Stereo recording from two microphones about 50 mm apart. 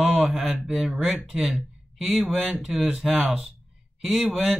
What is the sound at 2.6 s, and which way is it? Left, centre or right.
Speech, centre.